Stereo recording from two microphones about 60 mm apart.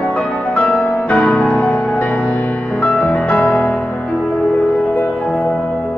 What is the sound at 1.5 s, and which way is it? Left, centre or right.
Music, left.